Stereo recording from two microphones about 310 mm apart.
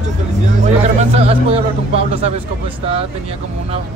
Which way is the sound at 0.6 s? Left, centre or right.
Right.